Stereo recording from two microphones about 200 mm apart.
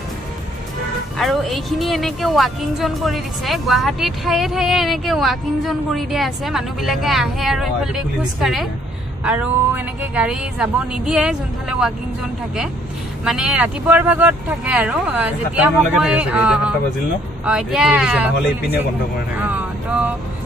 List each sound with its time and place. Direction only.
1.1 s a woman's voice: centre (ahead or behind)
9.2 s a sound: 5° right (ahead or behind)
10.1 s a woman's voice: 5° right (ahead or behind)
13.2 s a woman's voice: 5° right (ahead or behind)
19.3 s vehicle: 10° right (ahead or behind)